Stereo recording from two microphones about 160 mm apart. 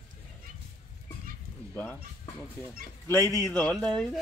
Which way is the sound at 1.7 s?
10° left (ahead or behind).